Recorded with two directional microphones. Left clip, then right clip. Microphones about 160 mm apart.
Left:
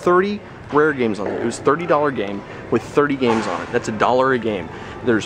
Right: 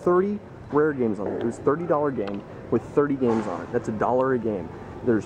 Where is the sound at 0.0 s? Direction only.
15° left (ahead or behind).